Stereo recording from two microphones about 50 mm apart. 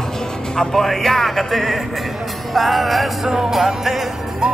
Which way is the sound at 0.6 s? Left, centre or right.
Centre.